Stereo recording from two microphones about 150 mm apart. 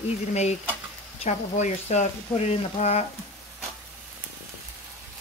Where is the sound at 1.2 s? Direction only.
50° left (ahead or behind).